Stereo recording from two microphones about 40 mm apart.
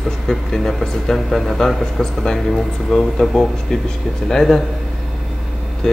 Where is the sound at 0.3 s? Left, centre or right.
Centre.